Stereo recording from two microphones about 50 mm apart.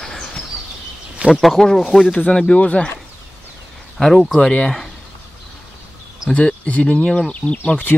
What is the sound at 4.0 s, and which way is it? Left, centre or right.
Speech, centre.